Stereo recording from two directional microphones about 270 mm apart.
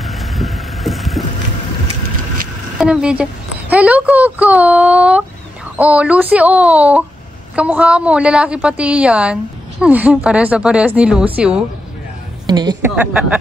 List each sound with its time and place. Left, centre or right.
0.0 s vehicle: centre
2.8 s a woman's voice: centre
12.4 s a woman's voice: centre
12.9 s a woman's voice: centre